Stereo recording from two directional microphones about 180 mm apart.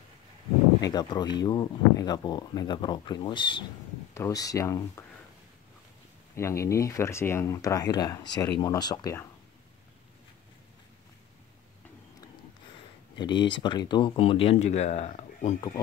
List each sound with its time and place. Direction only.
0.8 s speech: 25° left (ahead or behind)
6.3 s speech: 15° left (ahead or behind)
13.2 s speech: 25° left (ahead or behind)